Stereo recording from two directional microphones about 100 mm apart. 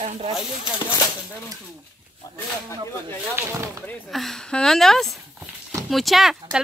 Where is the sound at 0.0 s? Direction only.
90° right.